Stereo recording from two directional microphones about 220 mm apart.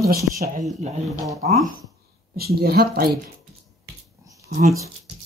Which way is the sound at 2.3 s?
45° right (ahead or behind).